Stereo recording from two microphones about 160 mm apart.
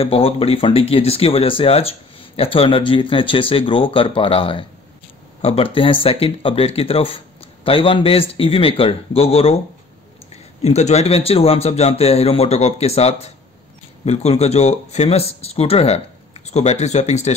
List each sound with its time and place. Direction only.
0.0 s speech: 35° left (ahead or behind)